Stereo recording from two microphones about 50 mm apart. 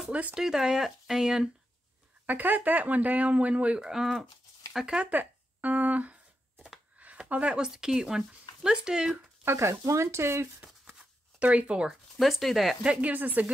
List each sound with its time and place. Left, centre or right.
0.1 s speech: right
0.4 s speech: centre
2.2 s speech: right
3.8 s speech: centre
5.1 s a sound: right
7.2 s speech: right
7.5 s speech: centre
9.4 s speech: right
11.3 s speech: right
11.9 s speech: centre
12.8 s speech: right